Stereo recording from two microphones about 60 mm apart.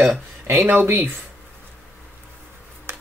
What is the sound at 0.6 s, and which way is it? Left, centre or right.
Speech, right.